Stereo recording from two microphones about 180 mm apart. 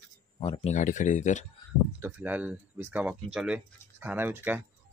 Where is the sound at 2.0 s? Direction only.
10° right (ahead or behind).